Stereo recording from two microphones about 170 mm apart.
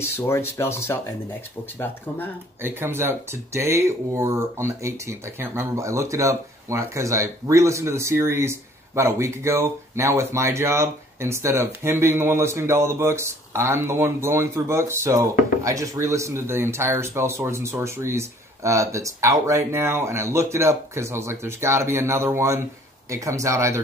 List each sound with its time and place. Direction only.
0.0 s speech: 15° left (ahead or behind)
2.6 s speech: 15° right (ahead or behind)